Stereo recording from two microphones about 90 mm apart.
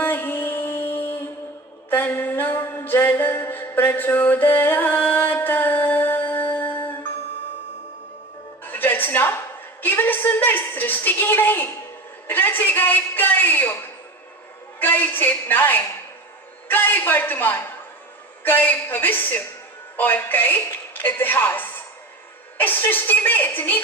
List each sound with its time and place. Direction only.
0.0 s mantra: 20° left (ahead or behind)
8.6 s a sound: 20° left (ahead or behind)
12.3 s a woman's voice: 20° left (ahead or behind)
14.8 s a woman's voice: 20° left (ahead or behind)